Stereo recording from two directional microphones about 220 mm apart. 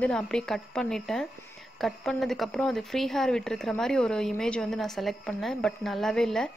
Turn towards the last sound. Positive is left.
turn(degrees=0)  # may be behind; listen again after turning